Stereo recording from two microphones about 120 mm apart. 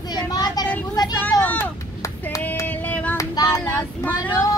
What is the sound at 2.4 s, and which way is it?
Female singing, 15° left (ahead or behind).